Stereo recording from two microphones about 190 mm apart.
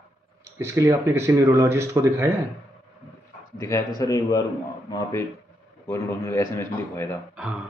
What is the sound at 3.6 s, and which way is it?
A man's voice, 15° left (ahead or behind).